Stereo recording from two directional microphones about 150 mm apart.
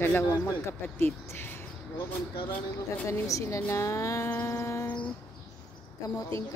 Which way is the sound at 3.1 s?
20° left (ahead or behind).